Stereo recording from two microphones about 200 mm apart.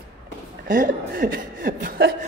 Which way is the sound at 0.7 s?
40° right (ahead or behind).